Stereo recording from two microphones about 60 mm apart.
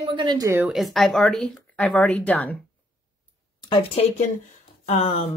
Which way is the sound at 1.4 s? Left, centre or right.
Centre.